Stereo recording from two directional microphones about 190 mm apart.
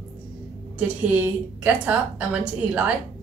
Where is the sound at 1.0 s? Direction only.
5° right (ahead or behind).